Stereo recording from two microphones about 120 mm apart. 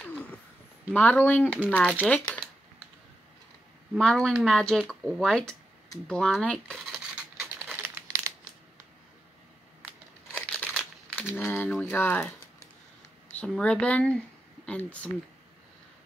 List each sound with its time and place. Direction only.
0.0 s a sound: 10° left (ahead or behind)
0.9 s speech: 15° left (ahead or behind)
3.9 s speech: 5° left (ahead or behind)
7.2 s a sound: 5° right (ahead or behind)
7.7 s crumpling: 20° right (ahead or behind)
10.3 s crumpling: 10° left (ahead or behind)
11.8 s speech: 15° left (ahead or behind)
13.3 s speech: 10° left (ahead or behind)